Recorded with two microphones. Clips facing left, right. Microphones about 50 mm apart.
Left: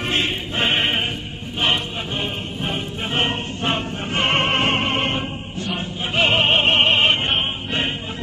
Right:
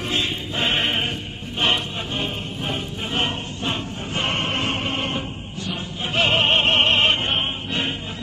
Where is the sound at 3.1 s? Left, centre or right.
Left.